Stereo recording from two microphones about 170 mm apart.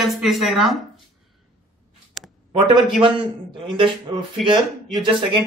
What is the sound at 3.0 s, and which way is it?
A man's voice, 30° right (ahead or behind).